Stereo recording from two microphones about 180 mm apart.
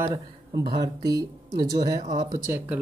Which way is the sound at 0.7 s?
20° right (ahead or behind).